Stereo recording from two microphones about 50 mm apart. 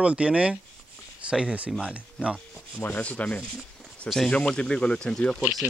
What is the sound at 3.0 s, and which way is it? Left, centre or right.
Speech, left.